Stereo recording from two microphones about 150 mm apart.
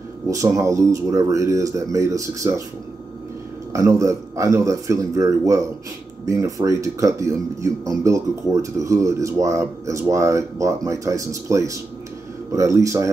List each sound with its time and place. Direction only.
0.3 s speech: 20° right (ahead or behind)
3.7 s speech: 20° right (ahead or behind)